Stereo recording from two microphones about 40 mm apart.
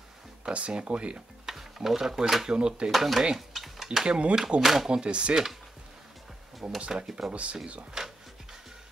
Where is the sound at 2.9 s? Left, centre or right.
Centre.